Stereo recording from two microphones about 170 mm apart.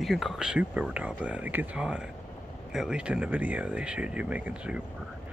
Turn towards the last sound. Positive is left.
turn(degrees=-5)  # may be behind; listen again after turning